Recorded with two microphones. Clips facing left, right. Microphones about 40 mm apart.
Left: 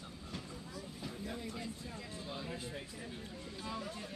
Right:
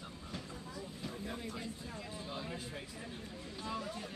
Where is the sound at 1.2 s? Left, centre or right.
Centre.